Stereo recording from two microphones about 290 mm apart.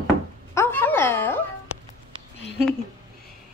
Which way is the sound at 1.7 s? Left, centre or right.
Left.